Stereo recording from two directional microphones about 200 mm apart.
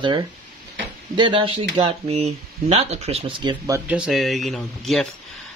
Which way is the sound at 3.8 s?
5° right (ahead or behind).